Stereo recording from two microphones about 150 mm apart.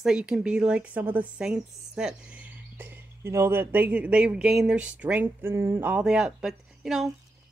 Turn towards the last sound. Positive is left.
turn(degrees=-5)  # may be behind; listen again after turning